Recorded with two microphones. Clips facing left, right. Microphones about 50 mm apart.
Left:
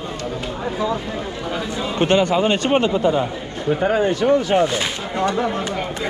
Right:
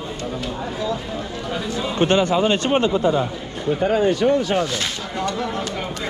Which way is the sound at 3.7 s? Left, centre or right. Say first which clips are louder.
Even; centre.